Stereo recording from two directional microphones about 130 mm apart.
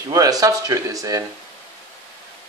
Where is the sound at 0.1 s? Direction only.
30° right (ahead or behind).